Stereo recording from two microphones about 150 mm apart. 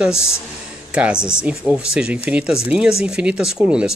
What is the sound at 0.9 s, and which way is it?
Speech, 5° right (ahead or behind).